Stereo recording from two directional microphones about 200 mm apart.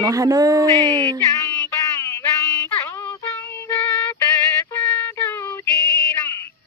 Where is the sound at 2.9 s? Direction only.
15° left (ahead or behind).